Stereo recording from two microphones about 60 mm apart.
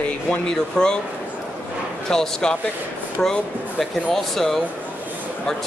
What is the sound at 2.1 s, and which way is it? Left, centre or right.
Speech, centre.